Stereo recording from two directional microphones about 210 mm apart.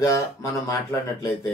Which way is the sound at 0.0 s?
15° left (ahead or behind).